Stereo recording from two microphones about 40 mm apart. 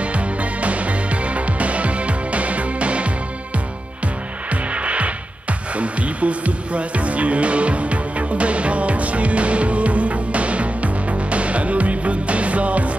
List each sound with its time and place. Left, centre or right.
0.0 s music: right
4.5 s music: right